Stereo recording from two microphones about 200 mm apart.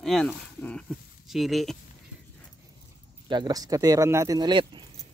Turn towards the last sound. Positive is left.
turn(degrees=-25)  # may be behind; listen again after turning